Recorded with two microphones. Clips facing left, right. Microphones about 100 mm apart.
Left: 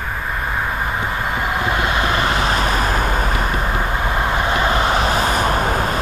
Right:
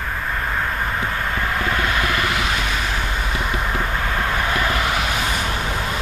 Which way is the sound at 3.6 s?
20° left (ahead or behind).